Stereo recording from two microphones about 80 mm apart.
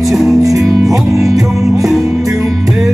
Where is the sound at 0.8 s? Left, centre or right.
Centre.